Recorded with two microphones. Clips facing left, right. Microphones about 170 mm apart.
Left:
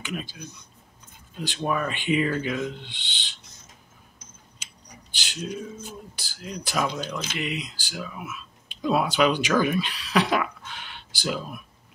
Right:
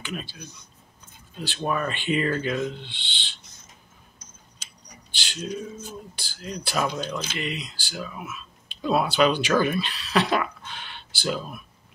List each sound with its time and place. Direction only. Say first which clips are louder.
0.0 s speech: left 1 dB; 15° left (ahead or behind)
1.4 s speech: even; 10° left (ahead or behind)
5.2 s speech: right 1 dB; 10° left (ahead or behind)
9.6 s throat clearing: even; 10° left (ahead or behind)